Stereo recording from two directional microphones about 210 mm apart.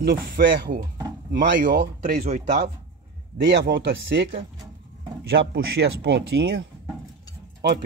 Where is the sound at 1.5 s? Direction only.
55° right (ahead or behind).